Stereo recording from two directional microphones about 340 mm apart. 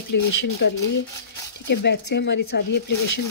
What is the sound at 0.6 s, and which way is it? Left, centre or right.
Speech, left.